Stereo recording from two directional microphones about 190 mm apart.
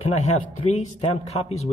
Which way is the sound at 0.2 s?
35° left (ahead or behind).